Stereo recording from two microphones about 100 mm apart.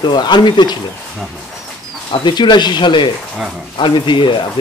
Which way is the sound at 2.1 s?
50° left (ahead or behind).